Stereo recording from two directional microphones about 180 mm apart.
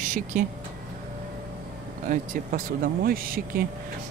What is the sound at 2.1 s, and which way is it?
Speech, 55° right (ahead or behind).